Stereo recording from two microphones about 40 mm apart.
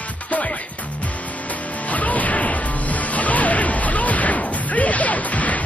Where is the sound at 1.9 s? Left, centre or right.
Left.